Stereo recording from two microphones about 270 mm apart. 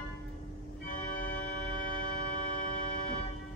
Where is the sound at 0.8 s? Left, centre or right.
Left.